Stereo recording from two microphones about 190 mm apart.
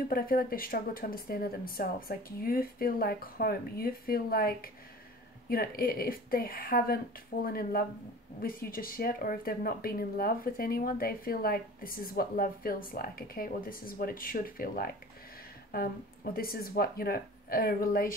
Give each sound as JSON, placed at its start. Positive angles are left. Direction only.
{"t": 0.1, "sound": "speech", "side_deg": 50}
{"t": 16.3, "sound": "speech", "side_deg": 50}